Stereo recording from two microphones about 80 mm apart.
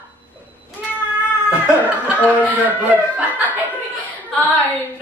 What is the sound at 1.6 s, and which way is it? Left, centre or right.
Chuckle, left.